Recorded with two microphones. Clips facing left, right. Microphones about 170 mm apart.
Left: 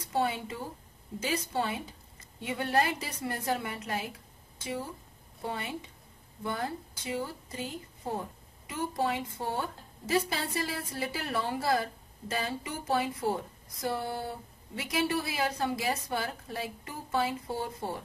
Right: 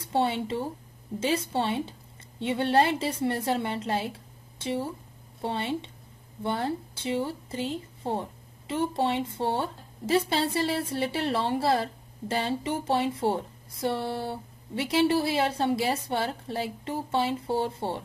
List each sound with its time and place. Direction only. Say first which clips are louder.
0.0 s a woman's voice: right 4 dB; 30° right (ahead or behind)